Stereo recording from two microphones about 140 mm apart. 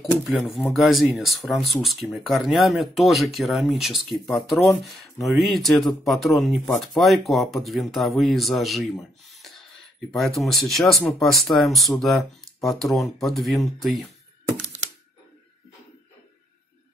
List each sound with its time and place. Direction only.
0.0 s speech: centre (ahead or behind)
9.3 s a sound: centre (ahead or behind)
10.1 s speech: centre (ahead or behind)